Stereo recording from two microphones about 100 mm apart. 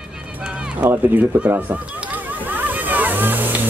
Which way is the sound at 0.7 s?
15° right (ahead or behind).